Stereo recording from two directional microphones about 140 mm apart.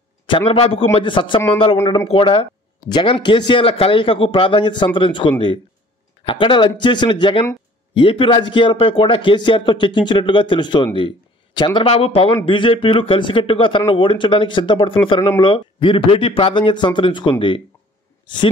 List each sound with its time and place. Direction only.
0.3 s a man's voice: 40° left (ahead or behind)